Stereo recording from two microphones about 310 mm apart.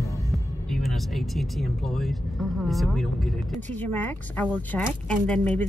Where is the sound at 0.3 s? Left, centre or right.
Centre.